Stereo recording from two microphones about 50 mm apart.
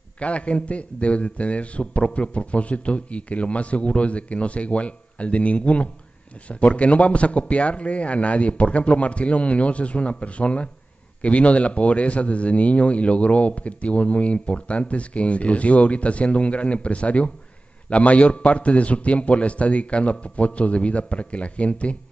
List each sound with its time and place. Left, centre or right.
0.2 s speech: left